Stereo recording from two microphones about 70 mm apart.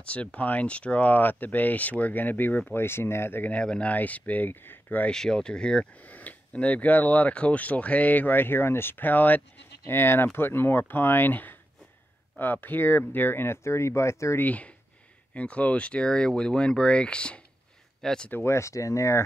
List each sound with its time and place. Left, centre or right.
0.0 s speech: centre
3.5 s speech: centre
5.1 s speech: centre; by 14.4 s left
14.4 s speech: left
18.3 s speech: left